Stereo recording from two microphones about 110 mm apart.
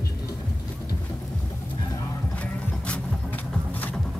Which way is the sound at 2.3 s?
10° left (ahead or behind).